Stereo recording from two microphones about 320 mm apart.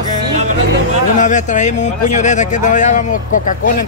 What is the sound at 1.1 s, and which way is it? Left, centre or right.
Speech, left.